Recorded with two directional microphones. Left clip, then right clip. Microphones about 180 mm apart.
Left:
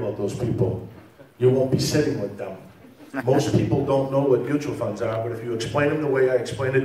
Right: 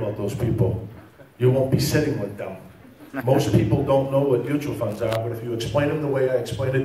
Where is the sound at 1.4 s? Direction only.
20° right (ahead or behind).